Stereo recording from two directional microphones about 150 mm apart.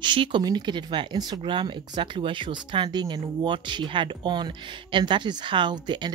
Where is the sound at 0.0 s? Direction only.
30° right (ahead or behind).